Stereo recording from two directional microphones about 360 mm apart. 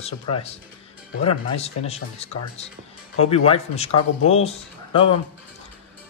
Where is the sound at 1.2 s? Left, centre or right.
Centre.